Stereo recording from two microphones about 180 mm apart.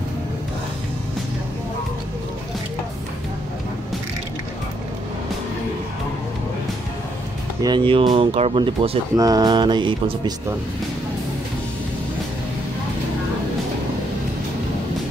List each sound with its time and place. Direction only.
7.6 s speech: 25° right (ahead or behind)